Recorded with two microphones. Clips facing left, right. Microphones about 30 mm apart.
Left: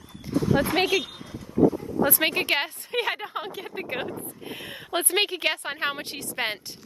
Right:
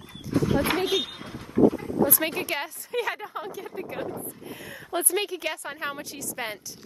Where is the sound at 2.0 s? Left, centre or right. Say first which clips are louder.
Left 8 dB; left.